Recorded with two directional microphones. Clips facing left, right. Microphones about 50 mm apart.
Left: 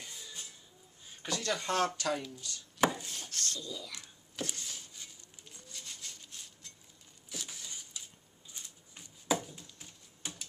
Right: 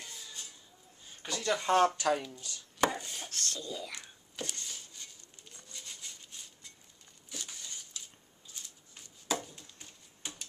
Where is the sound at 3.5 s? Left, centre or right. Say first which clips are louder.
Right 2 dB; right.